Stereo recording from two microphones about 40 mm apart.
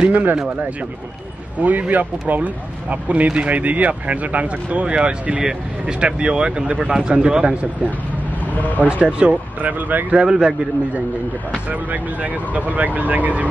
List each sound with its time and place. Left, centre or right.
0.1 s speech: right
1.6 s speech: right
8.5 s speech: left
8.8 s speech: right
9.6 s speech: right
10.1 s speech: right
11.7 s speech: right